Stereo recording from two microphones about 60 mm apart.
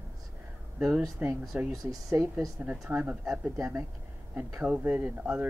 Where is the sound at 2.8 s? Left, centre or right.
Right.